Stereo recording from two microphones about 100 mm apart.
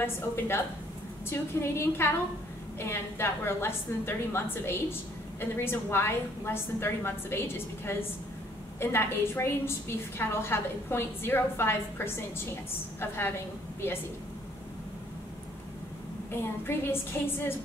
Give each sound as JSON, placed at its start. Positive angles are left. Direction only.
{"t": 1.3, "sound": "a woman's voice", "side_deg": 25}
{"t": 16.3, "sound": "a woman's voice", "side_deg": 25}